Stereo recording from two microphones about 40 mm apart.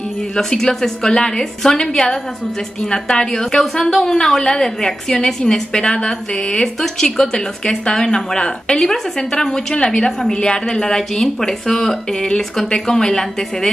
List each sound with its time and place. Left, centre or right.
0.4 s a woman's voice: centre
6.8 s a woman's voice: centre